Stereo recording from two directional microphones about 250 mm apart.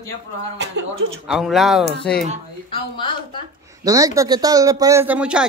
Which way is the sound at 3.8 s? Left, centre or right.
Centre.